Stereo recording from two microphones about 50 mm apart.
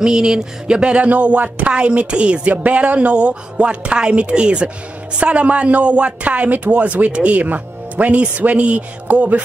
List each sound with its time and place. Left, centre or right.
0.0 s a man's voice: centre; by 9.4 s right